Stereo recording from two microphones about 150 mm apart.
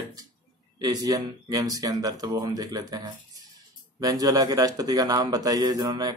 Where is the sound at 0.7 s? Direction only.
25° right (ahead or behind).